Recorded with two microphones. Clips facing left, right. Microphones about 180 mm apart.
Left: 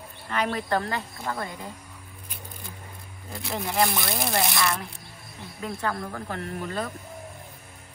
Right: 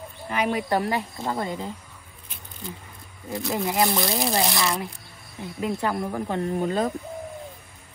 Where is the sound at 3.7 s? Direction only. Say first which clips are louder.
Right 1 dB; 20° right (ahead or behind).